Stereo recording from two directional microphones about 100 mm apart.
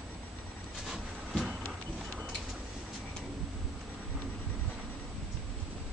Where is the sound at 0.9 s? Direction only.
5° right (ahead or behind).